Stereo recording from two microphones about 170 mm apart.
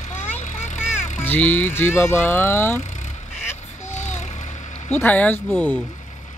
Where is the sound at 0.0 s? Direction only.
45° left (ahead or behind).